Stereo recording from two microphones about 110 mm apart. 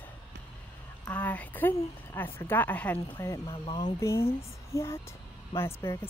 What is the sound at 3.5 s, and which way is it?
Speech, 45° left (ahead or behind).